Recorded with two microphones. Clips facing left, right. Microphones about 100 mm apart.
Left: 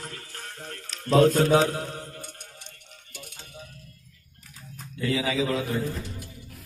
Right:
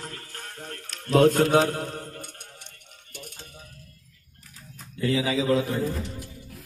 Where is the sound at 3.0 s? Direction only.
50° right (ahead or behind).